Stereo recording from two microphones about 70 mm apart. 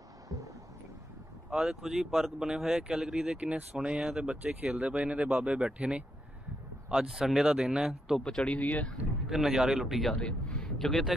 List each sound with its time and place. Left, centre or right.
1.5 s speech: centre
8.2 s speech: centre
8.5 s speech: left
9.3 s speech: centre
10.1 s speech: centre